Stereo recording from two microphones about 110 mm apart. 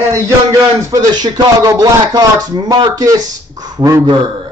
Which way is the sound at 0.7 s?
35° right (ahead or behind).